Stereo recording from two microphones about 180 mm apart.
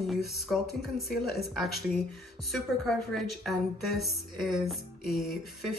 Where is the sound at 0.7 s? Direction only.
60° left (ahead or behind).